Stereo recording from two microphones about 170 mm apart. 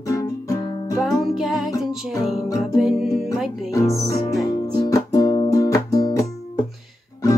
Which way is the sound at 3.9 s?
20° left (ahead or behind).